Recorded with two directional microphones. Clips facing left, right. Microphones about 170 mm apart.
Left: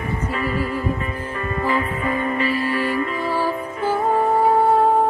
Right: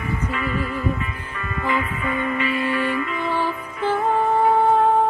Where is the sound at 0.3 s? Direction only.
35° left (ahead or behind).